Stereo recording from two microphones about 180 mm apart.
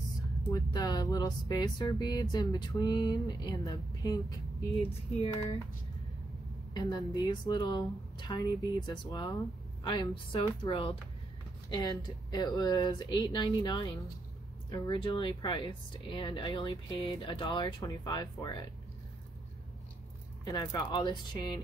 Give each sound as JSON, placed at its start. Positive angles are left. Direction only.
{"t": 0.5, "sound": "speech", "side_deg": 20}
{"t": 6.7, "sound": "speech", "side_deg": 20}
{"t": 20.4, "sound": "speech", "side_deg": 20}